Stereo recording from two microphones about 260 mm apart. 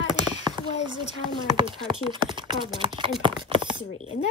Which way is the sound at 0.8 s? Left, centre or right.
Centre.